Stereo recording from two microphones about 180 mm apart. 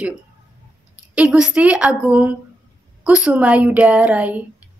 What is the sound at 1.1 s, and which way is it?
Speech, 5° right (ahead or behind).